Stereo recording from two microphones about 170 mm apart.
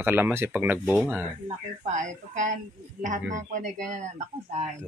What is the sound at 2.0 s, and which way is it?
Speech, 45° right (ahead or behind).